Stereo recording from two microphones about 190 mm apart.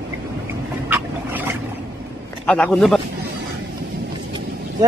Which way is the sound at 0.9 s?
10° right (ahead or behind).